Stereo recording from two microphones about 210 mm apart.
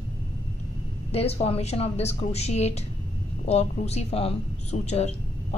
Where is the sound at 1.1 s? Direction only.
30° left (ahead or behind).